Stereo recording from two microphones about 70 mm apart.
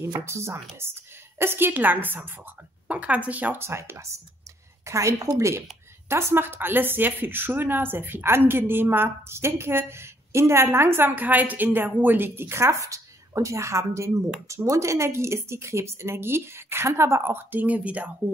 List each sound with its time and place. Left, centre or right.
0.2 s a woman's voice: right
3.6 s a woman's voice: right
6.0 s a woman's voice: right